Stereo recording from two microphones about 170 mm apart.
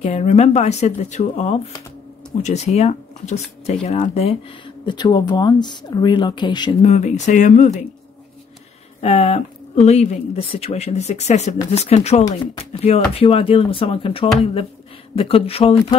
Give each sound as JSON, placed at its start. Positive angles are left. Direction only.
{"t": 0.0, "sound": "speech", "side_deg": 40}
{"t": 6.8, "sound": "speech", "side_deg": 40}
{"t": 9.0, "sound": "speech", "side_deg": 40}